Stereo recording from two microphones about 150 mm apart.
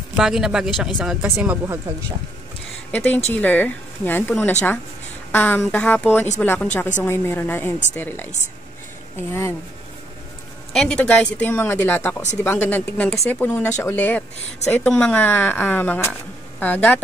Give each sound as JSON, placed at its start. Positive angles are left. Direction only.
{"t": 0.1, "sound": "speech", "side_deg": -5}
{"t": 0.9, "sound": "speech", "side_deg": -15}
{"t": 2.9, "sound": "speech", "side_deg": 10}
{"t": 9.3, "sound": "speech", "side_deg": 15}
{"t": 10.7, "sound": "speech", "side_deg": 5}